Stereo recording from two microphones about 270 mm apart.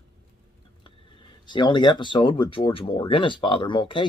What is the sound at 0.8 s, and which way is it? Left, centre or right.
Speech, centre.